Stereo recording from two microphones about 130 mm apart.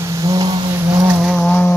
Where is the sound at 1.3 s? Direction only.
15° left (ahead or behind).